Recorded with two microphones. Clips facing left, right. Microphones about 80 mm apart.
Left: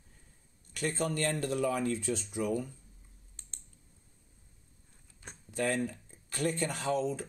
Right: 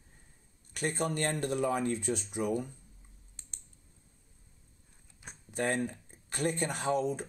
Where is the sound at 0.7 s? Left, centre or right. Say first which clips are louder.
Even; right.